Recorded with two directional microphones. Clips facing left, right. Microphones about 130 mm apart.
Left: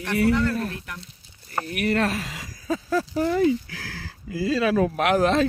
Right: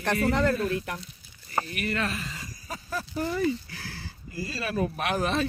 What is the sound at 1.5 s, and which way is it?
Speech, 60° left (ahead or behind).